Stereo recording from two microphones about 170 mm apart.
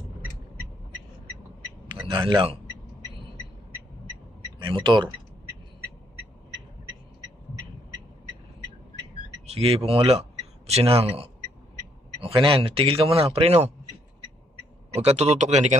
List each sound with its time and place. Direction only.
2.0 s a man's voice: 25° right (ahead or behind)
4.6 s a man's voice: 30° right (ahead or behind)
9.5 s a man's voice: 35° right (ahead or behind)
12.4 s a man's voice: 30° right (ahead or behind)
15.0 s a man's voice: 40° right (ahead or behind)